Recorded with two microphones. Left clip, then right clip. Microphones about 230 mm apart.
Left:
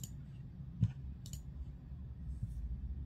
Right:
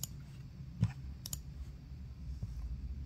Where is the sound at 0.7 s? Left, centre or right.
Right.